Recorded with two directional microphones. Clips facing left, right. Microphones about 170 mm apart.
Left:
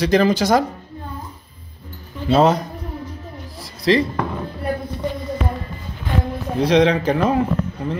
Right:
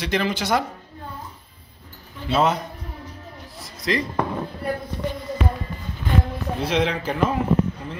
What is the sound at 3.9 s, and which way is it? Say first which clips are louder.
Speech: left 8 dB; 30° left (ahead or behind).